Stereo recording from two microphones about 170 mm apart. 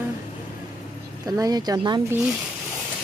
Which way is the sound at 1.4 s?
20° right (ahead or behind).